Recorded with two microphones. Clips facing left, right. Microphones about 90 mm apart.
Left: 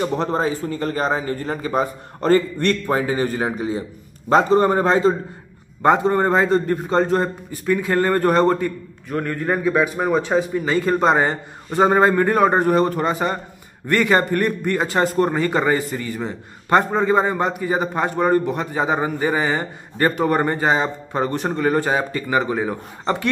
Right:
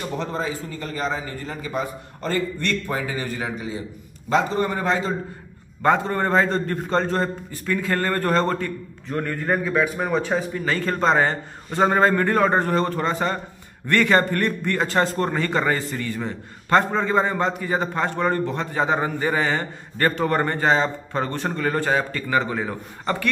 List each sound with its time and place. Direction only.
0.0 s a man's voice: 45° left (ahead or behind)
5.8 s a man's voice: 20° left (ahead or behind)
9.1 s a man's voice: centre (ahead or behind)